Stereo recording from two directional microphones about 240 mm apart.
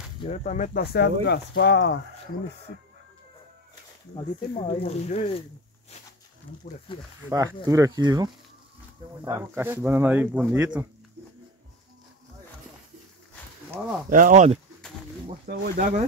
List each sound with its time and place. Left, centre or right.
0.2 s speech: left
4.2 s speech: centre
6.9 s speech: left
7.2 s speech: centre
14.0 s speech: right